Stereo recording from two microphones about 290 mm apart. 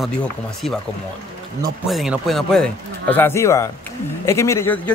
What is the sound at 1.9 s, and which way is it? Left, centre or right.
A man's voice, centre.